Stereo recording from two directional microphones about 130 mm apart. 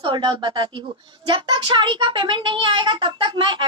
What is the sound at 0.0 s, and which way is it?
A woman's voice, 40° right (ahead or behind).